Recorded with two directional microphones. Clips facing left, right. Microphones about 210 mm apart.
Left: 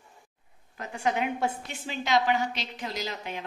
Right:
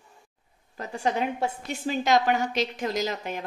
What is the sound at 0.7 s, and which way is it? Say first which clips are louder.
A woman's voice: right 2 dB; 35° right (ahead or behind).